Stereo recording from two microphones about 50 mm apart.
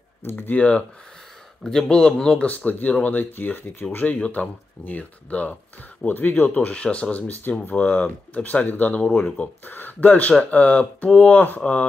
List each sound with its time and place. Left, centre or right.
0.2 s speech: left
0.6 s speech: left
1.6 s speech: centre
2.3 s speech: left
6.0 s speech: left
7.7 s speech: left
9.7 s speech: left